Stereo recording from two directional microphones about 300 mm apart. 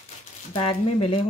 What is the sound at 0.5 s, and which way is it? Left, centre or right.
Speech, centre.